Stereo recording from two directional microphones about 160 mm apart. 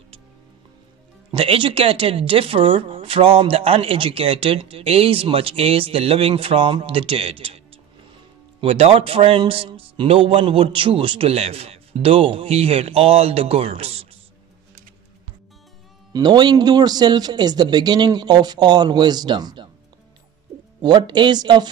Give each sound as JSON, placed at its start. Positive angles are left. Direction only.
{"t": 1.3, "sound": "speech", "side_deg": -35}
{"t": 16.1, "sound": "speech", "side_deg": -25}
{"t": 20.8, "sound": "speech", "side_deg": -30}